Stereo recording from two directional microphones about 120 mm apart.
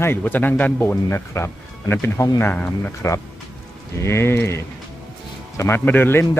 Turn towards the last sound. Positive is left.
turn(degrees=15)  # may be behind; listen again after turning